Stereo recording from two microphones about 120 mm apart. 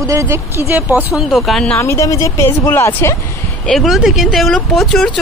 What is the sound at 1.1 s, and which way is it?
Speech, centre (ahead or behind).